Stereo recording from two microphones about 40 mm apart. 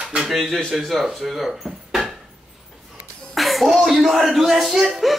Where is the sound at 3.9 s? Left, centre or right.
Centre.